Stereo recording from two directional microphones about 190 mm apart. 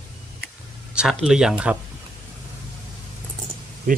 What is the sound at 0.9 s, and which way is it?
Speech, 5° right (ahead or behind).